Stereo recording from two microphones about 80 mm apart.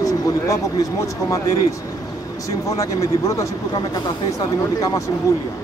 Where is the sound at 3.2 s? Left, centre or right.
Left.